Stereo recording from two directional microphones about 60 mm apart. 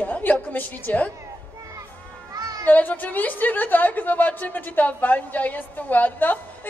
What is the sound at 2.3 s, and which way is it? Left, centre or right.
Children playing, right.